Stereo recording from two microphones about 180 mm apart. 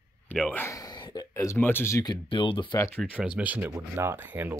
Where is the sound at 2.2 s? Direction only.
25° left (ahead or behind).